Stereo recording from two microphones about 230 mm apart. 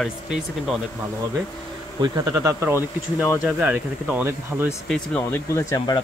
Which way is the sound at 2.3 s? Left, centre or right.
Centre.